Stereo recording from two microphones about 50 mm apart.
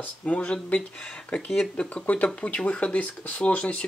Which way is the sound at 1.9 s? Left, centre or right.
Left.